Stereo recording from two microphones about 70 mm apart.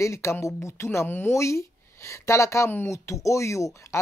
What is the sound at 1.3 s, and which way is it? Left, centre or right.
Speech, left.